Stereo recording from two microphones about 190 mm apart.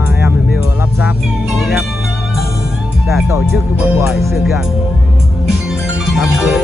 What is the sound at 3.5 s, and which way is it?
Speech, 5° right (ahead or behind).